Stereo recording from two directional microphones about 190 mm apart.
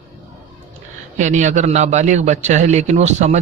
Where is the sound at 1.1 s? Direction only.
40° right (ahead or behind).